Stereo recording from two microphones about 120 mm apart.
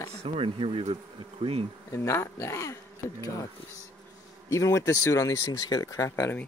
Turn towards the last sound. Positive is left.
turn(degrees=20)  # may be behind; listen again after turning